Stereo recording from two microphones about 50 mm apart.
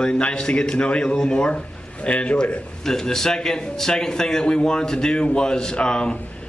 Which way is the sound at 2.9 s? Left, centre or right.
Centre.